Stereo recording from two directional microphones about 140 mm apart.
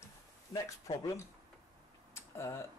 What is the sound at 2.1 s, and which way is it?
Tick-tock, 20° left (ahead or behind).